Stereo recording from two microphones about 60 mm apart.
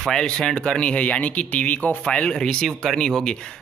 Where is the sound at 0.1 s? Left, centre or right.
Centre.